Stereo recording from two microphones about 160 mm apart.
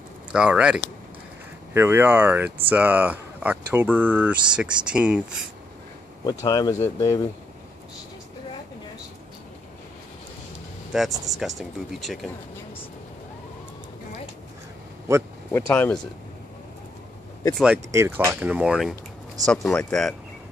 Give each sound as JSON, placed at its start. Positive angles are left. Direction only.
{"t": 0.3, "sound": "speech", "side_deg": -5}
{"t": 6.4, "sound": "speech", "side_deg": 20}
{"t": 10.9, "sound": "speech", "side_deg": 0}
{"t": 15.5, "sound": "speech", "side_deg": 10}
{"t": 17.9, "sound": "speech", "side_deg": -15}